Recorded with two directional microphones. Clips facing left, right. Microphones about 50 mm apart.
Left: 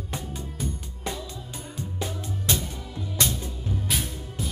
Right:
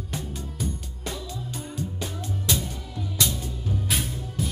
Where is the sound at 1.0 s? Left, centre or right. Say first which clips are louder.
Even; left.